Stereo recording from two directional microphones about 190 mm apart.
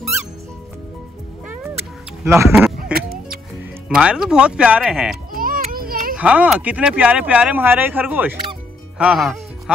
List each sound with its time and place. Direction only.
2.2 s speech: 15° right (ahead or behind)
2.8 s music: 50° right (ahead or behind)
3.9 s speech: 5° right (ahead or behind)
5.3 s children playing: 50° right (ahead or behind)
6.1 s speech: 5° right (ahead or behind)